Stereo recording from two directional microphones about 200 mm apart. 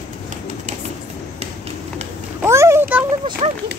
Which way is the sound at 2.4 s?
15° right (ahead or behind).